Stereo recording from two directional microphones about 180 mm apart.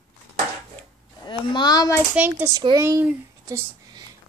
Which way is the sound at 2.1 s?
10° right (ahead or behind).